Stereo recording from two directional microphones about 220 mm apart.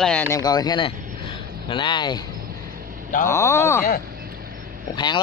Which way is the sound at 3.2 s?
10° left (ahead or behind).